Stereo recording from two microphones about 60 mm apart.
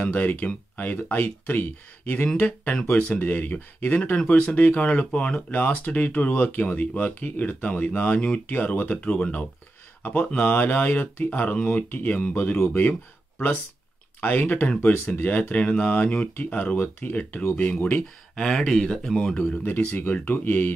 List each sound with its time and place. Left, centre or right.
0.0 s speech: left
9.0 s speech: centre
14.2 s speech: left
16.7 s speech: left
18.3 s speech: centre
19.3 s speech: centre